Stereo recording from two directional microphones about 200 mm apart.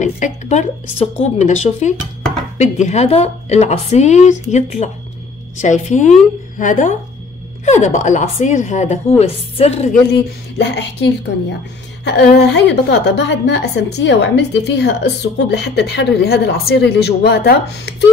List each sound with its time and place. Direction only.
0.0 s a woman's voice: 35° left (ahead or behind)
10.1 s a woman's voice: 60° left (ahead or behind)